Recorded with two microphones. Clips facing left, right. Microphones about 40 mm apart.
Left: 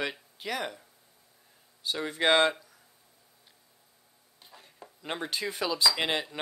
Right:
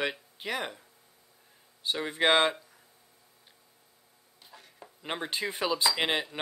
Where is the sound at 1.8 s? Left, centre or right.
Right.